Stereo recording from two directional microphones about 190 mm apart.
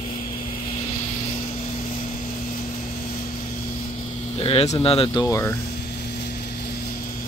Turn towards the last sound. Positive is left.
turn(degrees=15)  # may be behind; listen again after turning